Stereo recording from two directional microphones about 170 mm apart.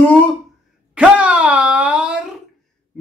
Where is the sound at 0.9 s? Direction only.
5° right (ahead or behind).